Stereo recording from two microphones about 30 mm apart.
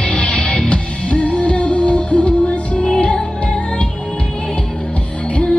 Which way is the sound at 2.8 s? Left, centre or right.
Left.